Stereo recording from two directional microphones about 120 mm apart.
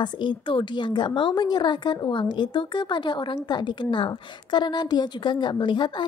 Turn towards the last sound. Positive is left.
turn(degrees=40)  # may be behind; listen again after turning